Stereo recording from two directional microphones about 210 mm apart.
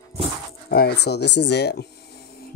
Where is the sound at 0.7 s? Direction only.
50° left (ahead or behind).